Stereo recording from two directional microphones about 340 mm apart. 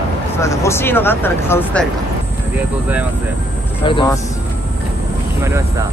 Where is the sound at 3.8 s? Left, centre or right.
Centre.